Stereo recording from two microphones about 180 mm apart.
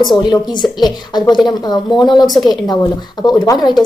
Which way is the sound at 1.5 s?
25° left (ahead or behind).